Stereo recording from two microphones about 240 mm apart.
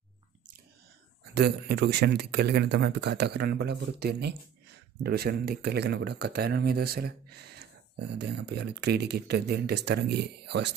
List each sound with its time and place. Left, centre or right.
1.3 s speech: right